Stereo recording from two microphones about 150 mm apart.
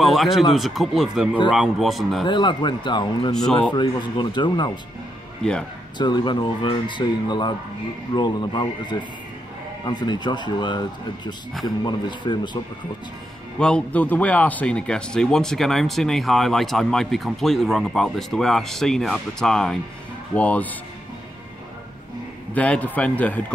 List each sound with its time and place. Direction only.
0.0 s speech: centre (ahead or behind)
2.2 s speech: 30° left (ahead or behind)
5.4 s speech: 5° left (ahead or behind)
5.9 s speech: 30° left (ahead or behind)
13.6 s a man's voice: 5° left (ahead or behind)
22.5 s a man's voice: 10° left (ahead or behind)